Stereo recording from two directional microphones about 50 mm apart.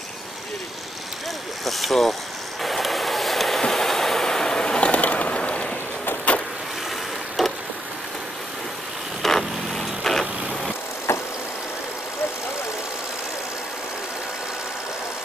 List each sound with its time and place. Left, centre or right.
1.6 s speech: centre
2.6 s vehicle: centre; by 5.7 s left
7.4 s vehicle: centre
9.2 s vehicle: centre
11.1 s vehicle: left